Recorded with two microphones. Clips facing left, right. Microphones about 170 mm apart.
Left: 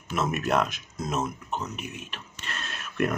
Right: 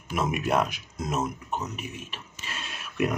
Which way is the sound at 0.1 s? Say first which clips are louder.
Even; 10° right (ahead or behind).